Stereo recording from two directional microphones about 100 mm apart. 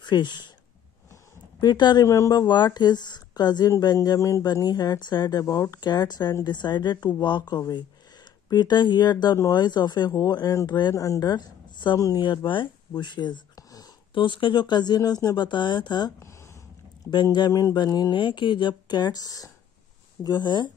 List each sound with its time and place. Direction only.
0.0 s speech: 50° left (ahead or behind)
1.6 s speech: 45° left (ahead or behind)
2.0 s speech: 30° left (ahead or behind)
2.3 s speech: 45° left (ahead or behind)
14.1 s speech: 55° left (ahead or behind)
17.1 s speech: 50° left (ahead or behind)
17.5 s speech: 35° left (ahead or behind)
18.1 s speech: 50° left (ahead or behind)